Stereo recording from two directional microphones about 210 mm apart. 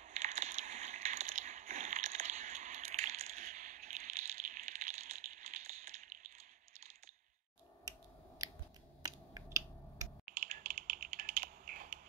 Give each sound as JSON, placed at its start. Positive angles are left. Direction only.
{"t": 0.0, "sound": "a sound", "side_deg": -35}
{"t": 8.4, "sound": "scissors", "side_deg": -20}
{"t": 9.0, "sound": "finger snapping", "side_deg": -15}
{"t": 10.4, "sound": "typing", "side_deg": -35}